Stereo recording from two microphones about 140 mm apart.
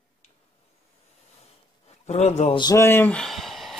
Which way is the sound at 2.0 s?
50° left (ahead or behind).